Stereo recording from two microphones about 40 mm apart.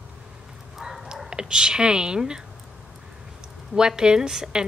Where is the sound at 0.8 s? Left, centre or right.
Centre.